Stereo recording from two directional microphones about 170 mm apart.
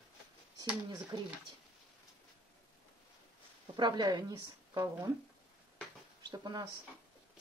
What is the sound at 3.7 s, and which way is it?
A woman's voice, 25° right (ahead or behind).